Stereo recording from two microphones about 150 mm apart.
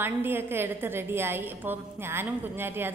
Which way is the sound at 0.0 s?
15° right (ahead or behind).